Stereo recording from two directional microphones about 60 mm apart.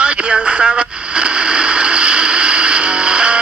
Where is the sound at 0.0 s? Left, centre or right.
Centre.